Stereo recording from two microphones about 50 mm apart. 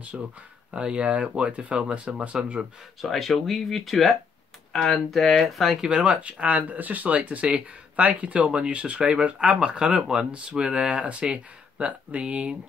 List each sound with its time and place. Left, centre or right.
0.1 s speech: centre
3.0 s speech: centre
5.8 s speech: centre